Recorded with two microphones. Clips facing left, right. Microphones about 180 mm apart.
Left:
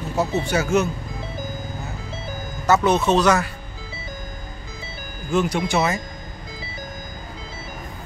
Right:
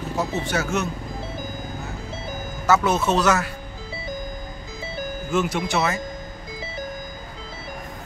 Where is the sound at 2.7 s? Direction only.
5° right (ahead or behind).